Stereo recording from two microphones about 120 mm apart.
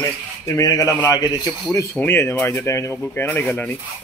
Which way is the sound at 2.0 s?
20° left (ahead or behind).